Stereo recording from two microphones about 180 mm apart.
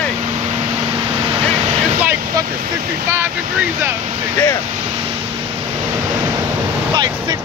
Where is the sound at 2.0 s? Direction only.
10° right (ahead or behind).